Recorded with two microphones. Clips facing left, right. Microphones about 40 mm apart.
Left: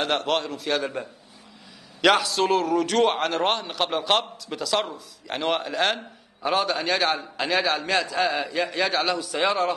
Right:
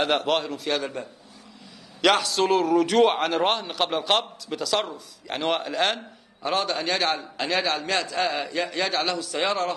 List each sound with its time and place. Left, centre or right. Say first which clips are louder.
0.0 s a man's voice: right 1 dB; centre